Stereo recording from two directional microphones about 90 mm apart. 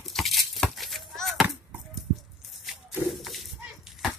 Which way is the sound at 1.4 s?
Centre (ahead or behind).